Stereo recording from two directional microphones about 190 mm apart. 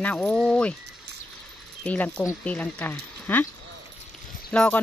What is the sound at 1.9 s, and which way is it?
Speech, 5° left (ahead or behind).